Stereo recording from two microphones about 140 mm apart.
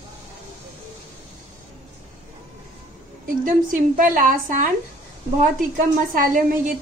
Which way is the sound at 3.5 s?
70° right (ahead or behind).